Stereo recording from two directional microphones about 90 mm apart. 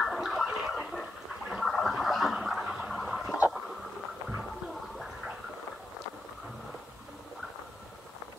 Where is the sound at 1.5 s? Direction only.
Centre (ahead or behind).